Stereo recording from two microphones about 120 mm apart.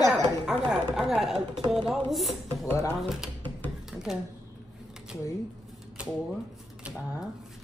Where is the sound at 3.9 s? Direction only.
5° right (ahead or behind).